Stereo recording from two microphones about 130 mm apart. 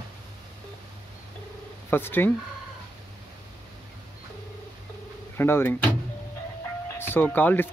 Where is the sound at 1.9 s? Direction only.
15° left (ahead or behind).